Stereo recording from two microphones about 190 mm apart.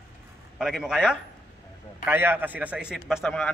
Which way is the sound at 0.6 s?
Centre (ahead or behind).